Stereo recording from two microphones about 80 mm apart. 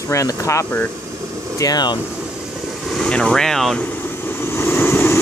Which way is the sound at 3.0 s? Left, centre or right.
Centre.